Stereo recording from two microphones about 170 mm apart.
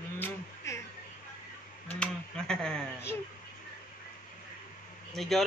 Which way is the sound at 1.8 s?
5° left (ahead or behind).